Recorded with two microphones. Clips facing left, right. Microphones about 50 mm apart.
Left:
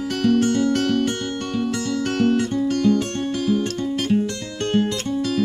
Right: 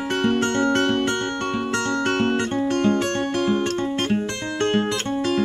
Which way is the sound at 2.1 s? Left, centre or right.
Right.